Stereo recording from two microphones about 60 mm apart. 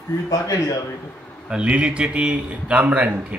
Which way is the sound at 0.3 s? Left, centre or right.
Left.